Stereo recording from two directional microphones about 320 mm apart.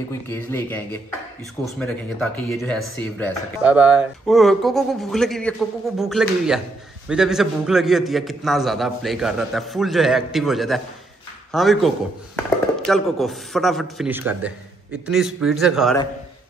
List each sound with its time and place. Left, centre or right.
0.3 s speech: centre